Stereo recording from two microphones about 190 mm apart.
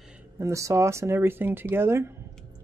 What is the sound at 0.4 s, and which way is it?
Speech, 15° right (ahead or behind).